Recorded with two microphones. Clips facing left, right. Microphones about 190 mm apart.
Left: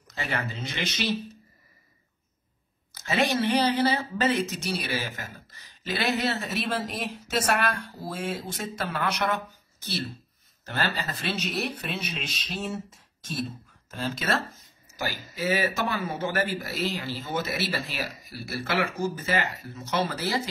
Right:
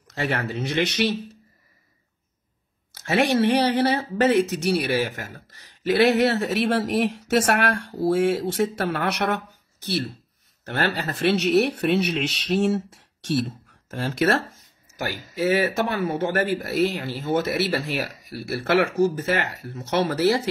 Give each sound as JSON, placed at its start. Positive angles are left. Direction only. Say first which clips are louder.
{"t": 0.1, "sound": "speech", "louder": "right 6 dB", "side_deg": -70}
{"t": 3.0, "sound": "a man's voice", "louder": "right 5 dB", "side_deg": -65}